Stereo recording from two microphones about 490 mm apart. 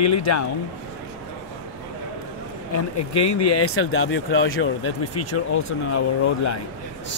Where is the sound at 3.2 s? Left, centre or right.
Left.